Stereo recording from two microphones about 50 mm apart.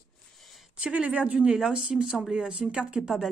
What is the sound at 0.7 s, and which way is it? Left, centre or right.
Speech, right.